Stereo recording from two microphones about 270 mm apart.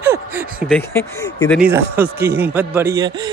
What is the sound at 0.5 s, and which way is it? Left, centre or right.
Speech, centre.